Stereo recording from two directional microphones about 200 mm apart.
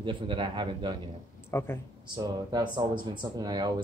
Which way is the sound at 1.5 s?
10° left (ahead or behind).